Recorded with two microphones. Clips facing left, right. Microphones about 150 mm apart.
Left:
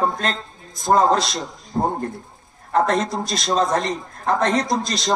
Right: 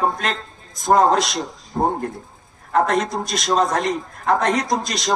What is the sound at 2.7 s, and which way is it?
A man's voice, 35° left (ahead or behind).